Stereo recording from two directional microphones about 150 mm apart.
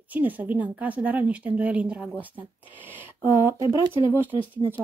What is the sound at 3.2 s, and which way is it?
Speech, 20° right (ahead or behind).